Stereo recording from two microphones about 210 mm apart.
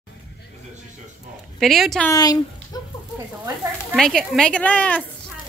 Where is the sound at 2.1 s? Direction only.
15° left (ahead or behind).